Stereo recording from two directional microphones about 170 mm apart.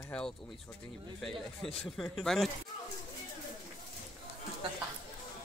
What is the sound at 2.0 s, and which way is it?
Speech, centre (ahead or behind).